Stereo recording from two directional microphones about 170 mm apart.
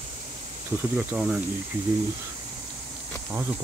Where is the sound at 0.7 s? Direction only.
15° right (ahead or behind).